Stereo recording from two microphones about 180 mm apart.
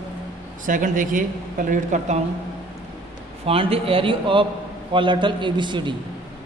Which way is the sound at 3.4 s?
30° right (ahead or behind).